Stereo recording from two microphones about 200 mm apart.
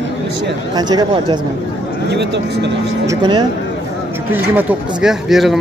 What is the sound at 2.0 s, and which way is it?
Speech, 60° right (ahead or behind).